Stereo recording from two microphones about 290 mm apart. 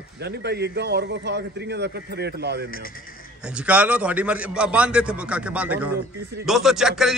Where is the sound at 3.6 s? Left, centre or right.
Centre.